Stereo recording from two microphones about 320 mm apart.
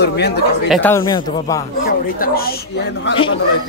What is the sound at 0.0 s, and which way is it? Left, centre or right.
Speech, left.